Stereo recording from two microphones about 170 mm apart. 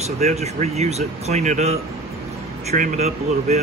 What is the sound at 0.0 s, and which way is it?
Speech, 40° right (ahead or behind).